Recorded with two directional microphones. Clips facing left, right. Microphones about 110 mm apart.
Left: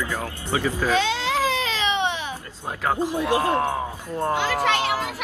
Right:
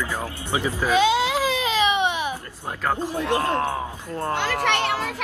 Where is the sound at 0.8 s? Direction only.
15° right (ahead or behind).